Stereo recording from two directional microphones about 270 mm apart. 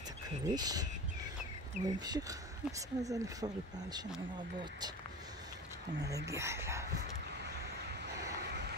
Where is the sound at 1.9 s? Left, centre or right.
Centre.